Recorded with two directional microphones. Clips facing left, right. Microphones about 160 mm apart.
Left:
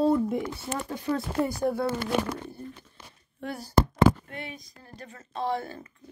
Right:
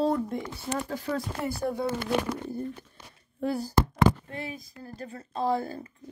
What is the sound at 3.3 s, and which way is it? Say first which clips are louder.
Speech: even; 30° right (ahead or behind).